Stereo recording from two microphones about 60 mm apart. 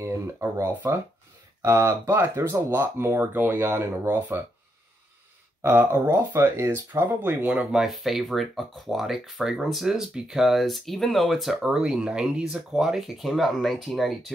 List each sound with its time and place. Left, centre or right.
0.0 s speech: right
2.2 s speech: right
5.6 s speech: right
6.4 s speech: right
6.7 s speech: right
7.5 s speech: centre
7.9 s speech: centre